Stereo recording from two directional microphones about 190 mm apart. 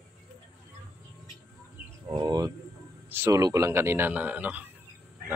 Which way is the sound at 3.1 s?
15° right (ahead or behind).